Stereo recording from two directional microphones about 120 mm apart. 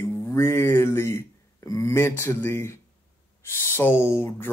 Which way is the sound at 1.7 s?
25° left (ahead or behind).